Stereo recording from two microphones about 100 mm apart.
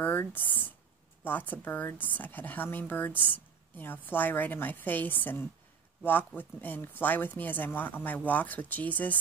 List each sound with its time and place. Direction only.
0.0 s speech: 20° left (ahead or behind)